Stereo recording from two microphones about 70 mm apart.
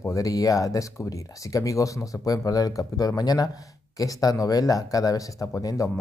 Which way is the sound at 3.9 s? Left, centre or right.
Left.